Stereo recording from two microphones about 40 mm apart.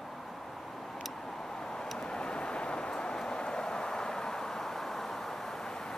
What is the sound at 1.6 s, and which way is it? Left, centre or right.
Vehicle, centre.